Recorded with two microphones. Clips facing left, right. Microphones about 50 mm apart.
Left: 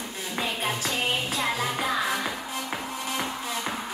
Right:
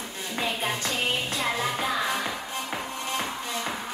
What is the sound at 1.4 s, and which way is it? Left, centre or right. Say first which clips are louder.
Music: right 1 dB; centre.